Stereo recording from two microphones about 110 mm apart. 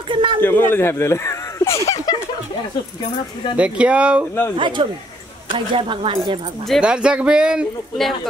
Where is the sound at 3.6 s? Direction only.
10° right (ahead or behind).